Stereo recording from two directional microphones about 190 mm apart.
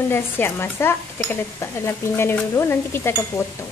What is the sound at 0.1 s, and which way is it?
Speech, 10° left (ahead or behind).